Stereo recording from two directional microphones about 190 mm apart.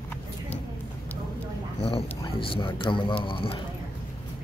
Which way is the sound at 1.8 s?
30° left (ahead or behind).